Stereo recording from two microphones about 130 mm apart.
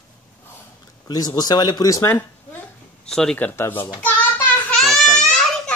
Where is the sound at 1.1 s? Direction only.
30° left (ahead or behind).